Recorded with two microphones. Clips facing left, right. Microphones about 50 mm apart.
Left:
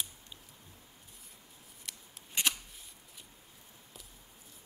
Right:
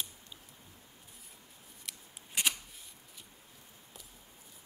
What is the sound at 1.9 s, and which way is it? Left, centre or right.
Scissors, centre.